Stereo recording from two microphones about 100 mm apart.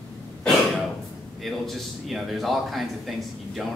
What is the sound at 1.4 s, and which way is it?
A man's voice, centre (ahead or behind).